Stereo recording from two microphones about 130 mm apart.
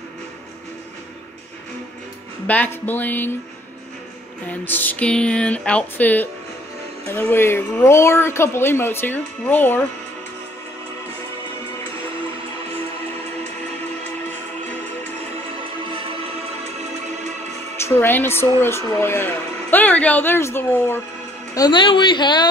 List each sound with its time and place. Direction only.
2.4 s speech: 10° left (ahead or behind)
4.5 s speech: 15° left (ahead or behind)
17.8 s speech: 20° left (ahead or behind)
21.5 s a woman's voice: 35° left (ahead or behind)